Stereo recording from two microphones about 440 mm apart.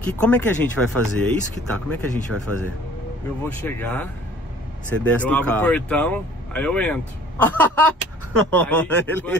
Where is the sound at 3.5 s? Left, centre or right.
Centre.